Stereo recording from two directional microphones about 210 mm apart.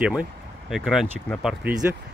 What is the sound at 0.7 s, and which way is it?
Speech, centre (ahead or behind).